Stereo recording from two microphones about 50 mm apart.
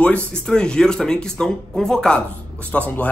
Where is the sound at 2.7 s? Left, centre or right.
Left.